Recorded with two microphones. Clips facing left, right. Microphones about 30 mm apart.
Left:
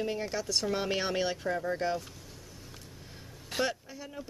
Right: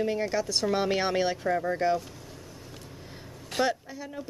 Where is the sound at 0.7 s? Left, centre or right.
Centre.